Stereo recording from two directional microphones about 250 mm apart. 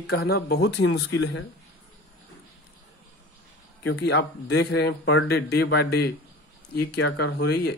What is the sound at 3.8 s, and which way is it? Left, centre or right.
Speech, left.